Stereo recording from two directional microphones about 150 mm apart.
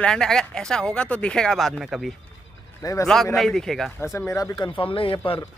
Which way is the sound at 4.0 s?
20° left (ahead or behind).